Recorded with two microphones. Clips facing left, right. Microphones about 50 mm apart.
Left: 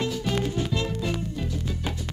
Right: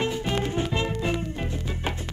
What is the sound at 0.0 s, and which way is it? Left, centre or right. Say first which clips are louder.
Music: right 1 dB; right.